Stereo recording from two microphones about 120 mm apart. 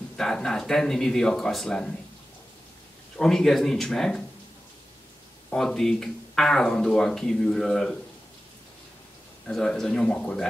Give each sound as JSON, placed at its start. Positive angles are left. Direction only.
{"t": 0.2, "sound": "speech", "side_deg": 5}
{"t": 3.2, "sound": "speech", "side_deg": 5}
{"t": 5.5, "sound": "speech", "side_deg": 5}
{"t": 9.5, "sound": "speech", "side_deg": 5}